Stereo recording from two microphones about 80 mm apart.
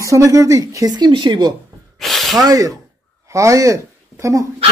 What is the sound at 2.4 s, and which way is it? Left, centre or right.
Speech, right.